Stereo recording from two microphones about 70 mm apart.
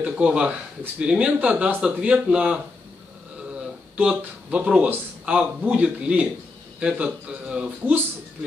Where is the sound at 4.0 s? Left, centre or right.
Centre.